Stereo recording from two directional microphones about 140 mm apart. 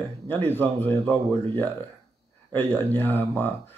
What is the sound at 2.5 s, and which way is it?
Speech, 15° left (ahead or behind).